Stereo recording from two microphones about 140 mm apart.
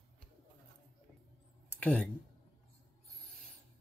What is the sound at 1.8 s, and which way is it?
Speech, 10° left (ahead or behind).